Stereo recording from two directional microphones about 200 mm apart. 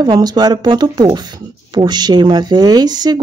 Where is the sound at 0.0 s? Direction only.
20° right (ahead or behind).